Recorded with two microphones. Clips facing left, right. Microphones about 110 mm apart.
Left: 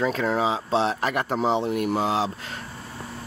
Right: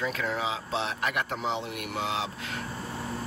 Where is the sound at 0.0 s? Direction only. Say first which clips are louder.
Left 7 dB; 35° left (ahead or behind).